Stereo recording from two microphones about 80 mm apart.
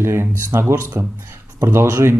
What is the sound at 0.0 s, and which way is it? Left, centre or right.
Speech, right.